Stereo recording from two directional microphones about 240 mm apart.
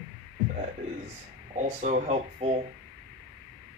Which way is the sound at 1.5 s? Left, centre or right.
Right.